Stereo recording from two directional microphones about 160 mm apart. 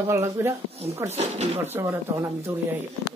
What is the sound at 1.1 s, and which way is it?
Speech, 45° right (ahead or behind).